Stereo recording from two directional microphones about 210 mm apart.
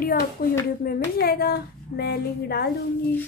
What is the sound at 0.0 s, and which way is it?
A woman's voice, 45° left (ahead or behind).